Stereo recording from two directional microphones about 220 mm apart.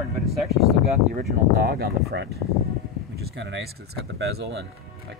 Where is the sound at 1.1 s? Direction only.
45° right (ahead or behind).